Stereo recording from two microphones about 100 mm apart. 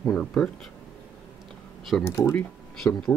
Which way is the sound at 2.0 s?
25° left (ahead or behind).